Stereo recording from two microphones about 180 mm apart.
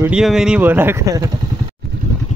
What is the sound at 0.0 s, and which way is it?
Speech, 5° right (ahead or behind).